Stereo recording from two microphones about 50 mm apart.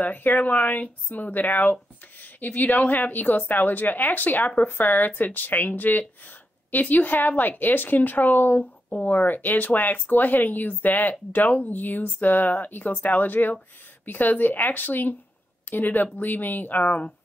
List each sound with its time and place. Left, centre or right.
0.0 s speech: left